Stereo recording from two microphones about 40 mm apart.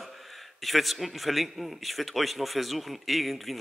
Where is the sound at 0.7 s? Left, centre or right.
Centre.